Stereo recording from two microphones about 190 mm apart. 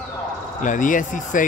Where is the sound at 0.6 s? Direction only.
45° left (ahead or behind).